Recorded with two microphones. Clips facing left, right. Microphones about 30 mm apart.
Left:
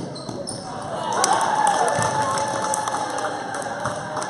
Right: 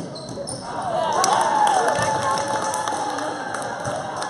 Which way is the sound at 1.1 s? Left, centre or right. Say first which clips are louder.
Even; centre.